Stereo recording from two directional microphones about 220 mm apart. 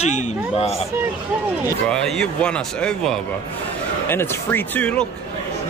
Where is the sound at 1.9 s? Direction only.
5° left (ahead or behind).